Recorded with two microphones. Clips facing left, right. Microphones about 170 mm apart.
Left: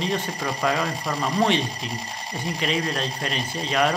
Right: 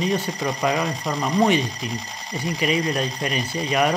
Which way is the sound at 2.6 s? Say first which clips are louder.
Right 4 dB; 10° right (ahead or behind).